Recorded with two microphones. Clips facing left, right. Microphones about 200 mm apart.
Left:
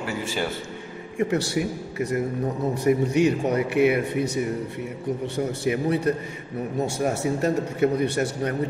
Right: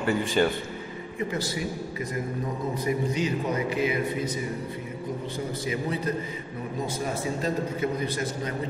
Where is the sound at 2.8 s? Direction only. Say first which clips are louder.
Left 8 dB; 70° left (ahead or behind).